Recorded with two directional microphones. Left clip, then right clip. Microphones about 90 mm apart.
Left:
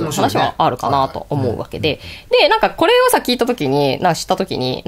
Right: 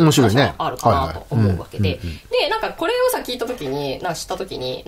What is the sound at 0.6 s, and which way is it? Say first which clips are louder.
Speech: left 3 dB; 35° left (ahead or behind).